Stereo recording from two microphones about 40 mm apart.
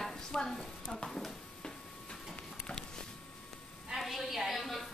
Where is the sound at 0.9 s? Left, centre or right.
Centre.